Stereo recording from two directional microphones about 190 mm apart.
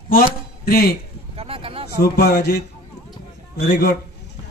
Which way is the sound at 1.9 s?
55° left (ahead or behind).